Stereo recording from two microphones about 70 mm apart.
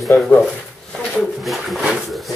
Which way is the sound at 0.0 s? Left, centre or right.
Centre.